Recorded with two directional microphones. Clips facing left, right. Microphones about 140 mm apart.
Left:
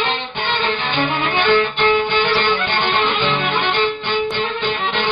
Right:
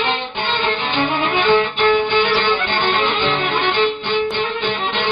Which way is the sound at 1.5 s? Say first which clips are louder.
Right 1 dB; 15° right (ahead or behind).